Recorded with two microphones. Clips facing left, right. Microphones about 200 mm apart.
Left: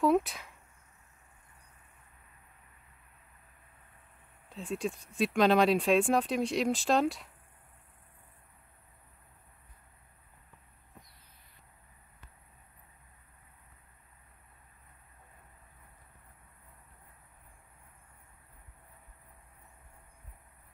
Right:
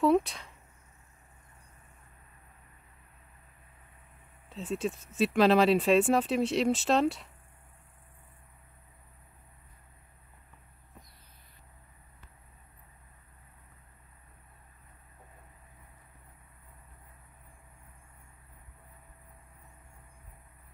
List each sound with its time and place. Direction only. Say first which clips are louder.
0.0 s speech: right 2 dB; centre (ahead or behind)
4.5 s speech: right 2 dB; centre (ahead or behind)